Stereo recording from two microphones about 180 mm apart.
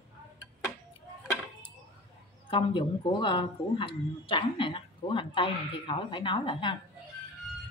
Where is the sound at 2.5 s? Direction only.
25° left (ahead or behind).